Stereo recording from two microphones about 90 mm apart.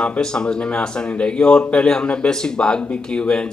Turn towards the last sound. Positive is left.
turn(degrees=10)  # may be behind; listen again after turning